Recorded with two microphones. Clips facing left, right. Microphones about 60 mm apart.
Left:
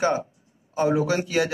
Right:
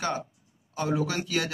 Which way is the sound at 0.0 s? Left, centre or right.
Left.